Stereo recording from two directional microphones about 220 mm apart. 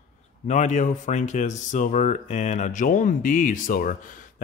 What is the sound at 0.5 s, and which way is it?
Speech, 35° left (ahead or behind).